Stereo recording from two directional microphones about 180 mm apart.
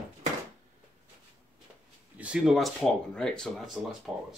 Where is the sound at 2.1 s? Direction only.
5° right (ahead or behind).